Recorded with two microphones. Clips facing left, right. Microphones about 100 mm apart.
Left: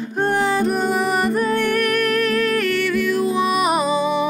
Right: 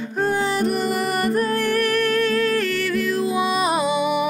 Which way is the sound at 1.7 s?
30° right (ahead or behind).